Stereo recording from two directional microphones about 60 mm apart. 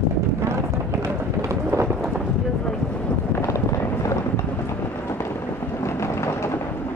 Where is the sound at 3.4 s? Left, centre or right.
Left.